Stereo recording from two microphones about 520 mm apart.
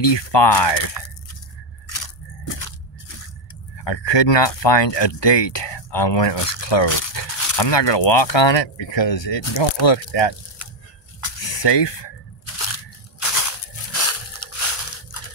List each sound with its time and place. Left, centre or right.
0.0 s speech: left
1.9 s biting: left
3.8 s speech: left
7.2 s dog: left
7.5 s speech: left
11.3 s a sound: left
12.5 s crunch: left